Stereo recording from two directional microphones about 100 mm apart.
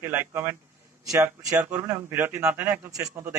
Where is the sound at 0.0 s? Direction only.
20° right (ahead or behind).